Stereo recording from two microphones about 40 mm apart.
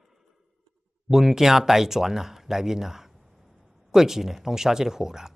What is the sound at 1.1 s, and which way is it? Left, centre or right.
Speech, centre.